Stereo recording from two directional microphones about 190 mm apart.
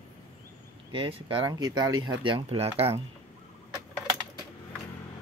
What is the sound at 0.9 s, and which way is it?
Speech, 30° right (ahead or behind).